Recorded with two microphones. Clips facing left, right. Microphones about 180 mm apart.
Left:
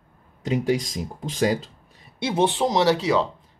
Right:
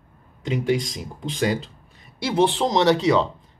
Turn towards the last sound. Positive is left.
turn(degrees=5)  # may be behind; listen again after turning